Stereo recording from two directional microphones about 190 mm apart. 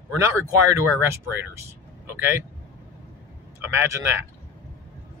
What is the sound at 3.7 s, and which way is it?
Speech, 15° right (ahead or behind).